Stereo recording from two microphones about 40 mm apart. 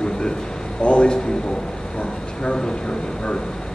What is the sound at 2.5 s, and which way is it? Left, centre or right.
Speech, centre.